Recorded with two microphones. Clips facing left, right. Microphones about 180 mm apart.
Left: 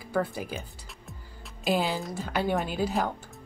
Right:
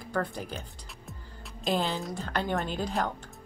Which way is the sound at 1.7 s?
5° left (ahead or behind).